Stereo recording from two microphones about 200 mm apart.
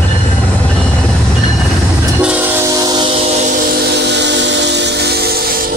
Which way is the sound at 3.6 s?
50° right (ahead or behind).